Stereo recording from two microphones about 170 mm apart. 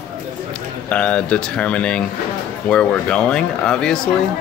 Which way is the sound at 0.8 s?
5° left (ahead or behind).